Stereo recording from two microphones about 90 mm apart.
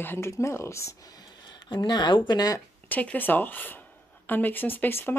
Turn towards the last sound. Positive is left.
turn(degrees=20)  # may be behind; listen again after turning